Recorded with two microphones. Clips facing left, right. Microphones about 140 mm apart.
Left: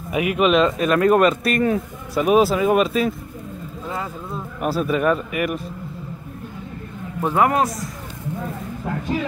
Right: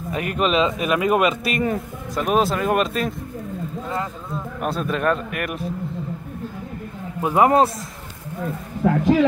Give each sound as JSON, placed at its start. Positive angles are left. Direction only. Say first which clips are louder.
{"t": 0.1, "sound": "speech", "louder": "left 4 dB", "side_deg": 5}
{"t": 4.6, "sound": "speech", "louder": "left 4 dB", "side_deg": 5}
{"t": 7.3, "sound": "a man's voice", "louder": "right 3 dB", "side_deg": -25}
{"t": 8.8, "sound": "speech", "louder": "right 9 dB", "side_deg": -90}